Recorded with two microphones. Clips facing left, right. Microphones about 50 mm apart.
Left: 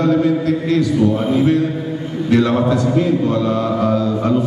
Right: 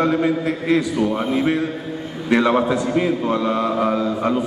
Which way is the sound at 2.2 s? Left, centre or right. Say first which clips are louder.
Left 2 dB; right.